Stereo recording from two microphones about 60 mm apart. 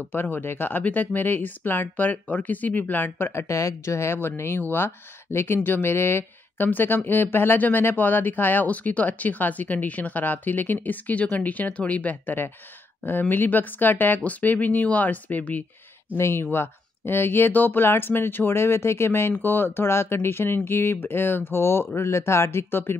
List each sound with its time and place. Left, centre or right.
0.1 s speech: left
3.4 s speech: left
16.2 s speech: left
18.6 s speech: left